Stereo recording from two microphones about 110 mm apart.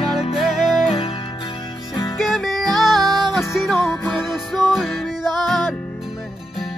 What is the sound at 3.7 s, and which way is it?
Music, 20° left (ahead or behind).